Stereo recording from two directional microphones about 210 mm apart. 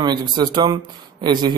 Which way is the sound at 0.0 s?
20° right (ahead or behind).